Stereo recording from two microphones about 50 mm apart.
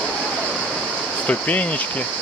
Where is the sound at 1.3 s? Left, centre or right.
Left.